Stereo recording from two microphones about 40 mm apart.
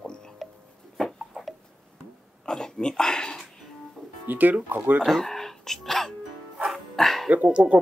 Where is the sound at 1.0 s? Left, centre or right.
Centre.